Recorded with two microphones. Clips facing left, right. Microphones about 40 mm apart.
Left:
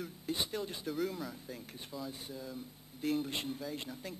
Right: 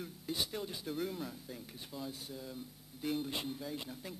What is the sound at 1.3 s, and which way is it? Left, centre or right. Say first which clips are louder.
Speech: left 2 dB; centre.